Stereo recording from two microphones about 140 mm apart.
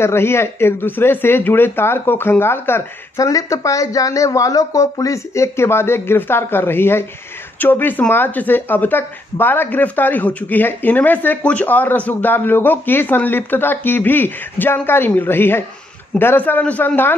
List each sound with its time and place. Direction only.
0.0 s speech: 15° left (ahead or behind)